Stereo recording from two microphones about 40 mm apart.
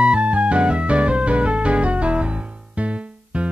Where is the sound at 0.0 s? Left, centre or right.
Right.